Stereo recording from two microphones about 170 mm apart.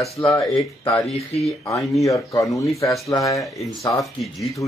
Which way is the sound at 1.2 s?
35° left (ahead or behind).